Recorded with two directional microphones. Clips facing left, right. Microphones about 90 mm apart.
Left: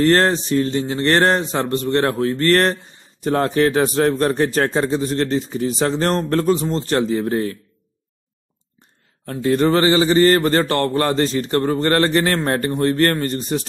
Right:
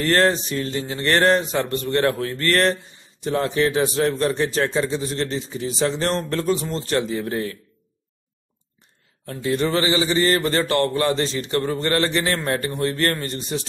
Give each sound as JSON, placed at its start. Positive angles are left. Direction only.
{"t": 0.0, "sound": "speech", "side_deg": 35}
{"t": 9.2, "sound": "speech", "side_deg": 40}